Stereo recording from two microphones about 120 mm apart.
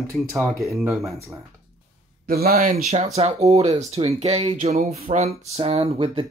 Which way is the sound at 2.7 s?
65° right (ahead or behind).